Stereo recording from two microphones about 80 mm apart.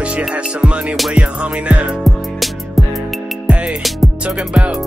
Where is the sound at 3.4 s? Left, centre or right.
Centre.